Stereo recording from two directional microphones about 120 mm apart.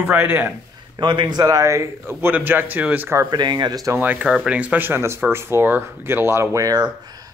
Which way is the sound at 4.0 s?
10° right (ahead or behind).